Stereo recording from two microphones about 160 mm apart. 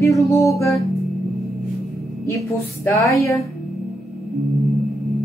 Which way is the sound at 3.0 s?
20° left (ahead or behind).